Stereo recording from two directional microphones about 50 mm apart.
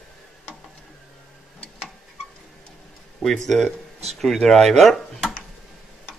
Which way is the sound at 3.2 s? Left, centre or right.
Centre.